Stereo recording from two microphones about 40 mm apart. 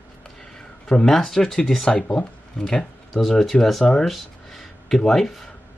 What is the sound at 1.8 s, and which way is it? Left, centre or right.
Speech, left.